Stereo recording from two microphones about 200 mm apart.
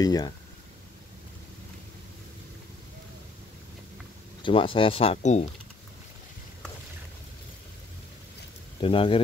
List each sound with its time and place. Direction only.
0.0 s speech: 20° left (ahead or behind)
4.4 s speech: 25° left (ahead or behind)
8.8 s speech: 25° left (ahead or behind)